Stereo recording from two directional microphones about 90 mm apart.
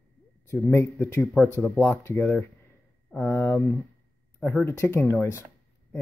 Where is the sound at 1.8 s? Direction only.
25° left (ahead or behind).